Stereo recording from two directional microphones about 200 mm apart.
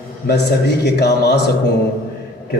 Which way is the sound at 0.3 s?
55° left (ahead or behind).